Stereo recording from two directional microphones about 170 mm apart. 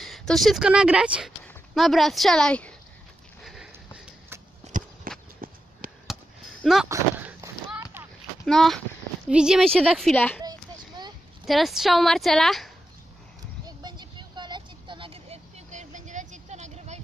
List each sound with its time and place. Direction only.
0.0 s a woman's voice: centre (ahead or behind)
3.4 s sniff: 5° right (ahead or behind)
5.1 s a sound: 55° right (ahead or behind)
5.8 s fireworks: 50° right (ahead or behind)
6.6 s speech: centre (ahead or behind)
6.9 s a sound: 15° right (ahead or behind)
8.5 s a woman's voice: 5° left (ahead or behind)
10.4 s a sound: 25° right (ahead or behind)
11.4 s a woman's voice: centre (ahead or behind)
13.7 s vehicle: 25° right (ahead or behind); by 17.0 s 40° right (ahead or behind)